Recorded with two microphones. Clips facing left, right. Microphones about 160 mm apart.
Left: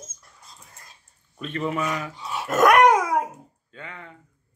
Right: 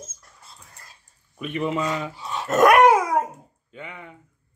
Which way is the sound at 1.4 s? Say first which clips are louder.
Right 2 dB; 15° right (ahead or behind).